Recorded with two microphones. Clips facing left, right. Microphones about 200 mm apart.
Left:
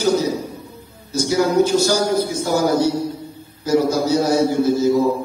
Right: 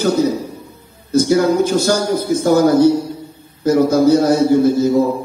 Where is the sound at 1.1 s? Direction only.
55° right (ahead or behind).